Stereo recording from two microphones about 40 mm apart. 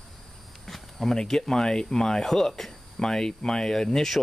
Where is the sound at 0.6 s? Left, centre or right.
Centre.